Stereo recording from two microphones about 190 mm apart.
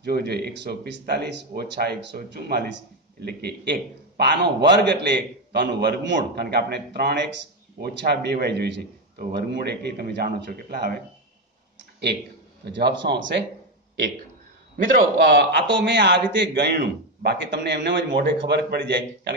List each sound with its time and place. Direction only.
0.0 s speech: 55° right (ahead or behind)
12.6 s speech: 65° right (ahead or behind)
15.2 s speech: 65° right (ahead or behind)